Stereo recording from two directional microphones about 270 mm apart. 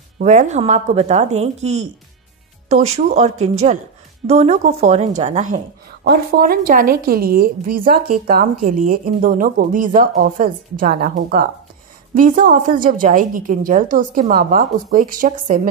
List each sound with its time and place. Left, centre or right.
0.2 s a woman's voice: right